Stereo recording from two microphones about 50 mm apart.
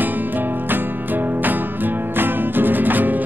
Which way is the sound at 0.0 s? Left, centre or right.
Right.